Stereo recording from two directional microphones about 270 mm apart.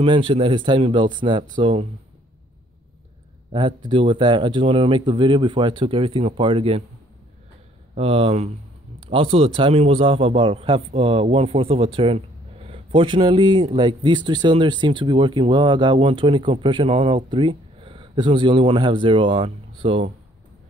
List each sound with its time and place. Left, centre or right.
0.0 s a man's voice: centre
3.5 s speech: centre
7.9 s a man's voice: right